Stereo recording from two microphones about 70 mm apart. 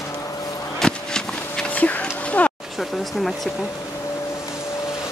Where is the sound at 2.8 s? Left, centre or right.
Centre.